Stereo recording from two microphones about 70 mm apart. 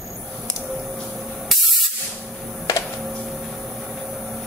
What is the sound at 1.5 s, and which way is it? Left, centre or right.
Spray, centre.